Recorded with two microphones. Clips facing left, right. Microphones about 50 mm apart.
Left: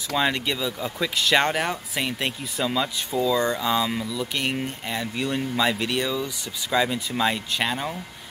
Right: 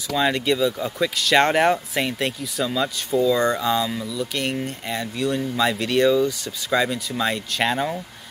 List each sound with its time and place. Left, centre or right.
0.1 s speech: centre
2.6 s speech: centre
5.1 s speech: centre
5.6 s speech: centre
7.6 s speech: centre